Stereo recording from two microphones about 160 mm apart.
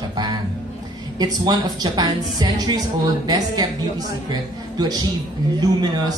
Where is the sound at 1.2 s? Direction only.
25° right (ahead or behind).